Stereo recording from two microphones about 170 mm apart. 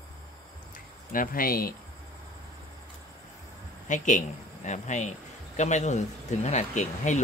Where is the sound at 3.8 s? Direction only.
45° left (ahead or behind).